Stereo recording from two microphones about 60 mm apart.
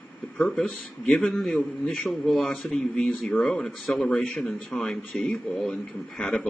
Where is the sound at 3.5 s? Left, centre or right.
Centre.